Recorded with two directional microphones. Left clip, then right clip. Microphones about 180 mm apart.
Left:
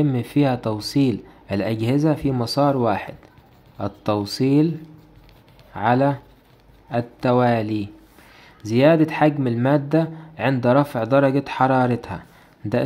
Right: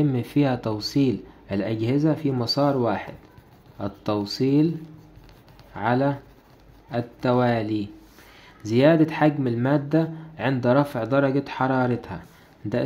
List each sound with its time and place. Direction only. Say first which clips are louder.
0.0 s speech: left 3 dB; 15° left (ahead or behind)